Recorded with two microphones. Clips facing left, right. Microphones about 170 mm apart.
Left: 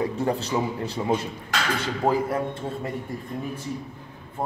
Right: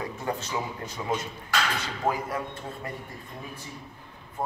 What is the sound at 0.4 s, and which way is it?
Speech, 35° left (ahead or behind).